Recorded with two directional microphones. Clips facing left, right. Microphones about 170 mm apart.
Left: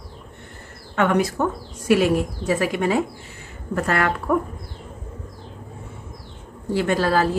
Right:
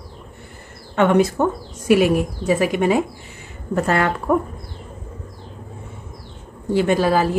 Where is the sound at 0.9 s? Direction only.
25° right (ahead or behind).